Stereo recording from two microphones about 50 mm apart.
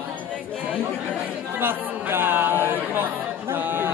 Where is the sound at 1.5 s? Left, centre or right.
Right.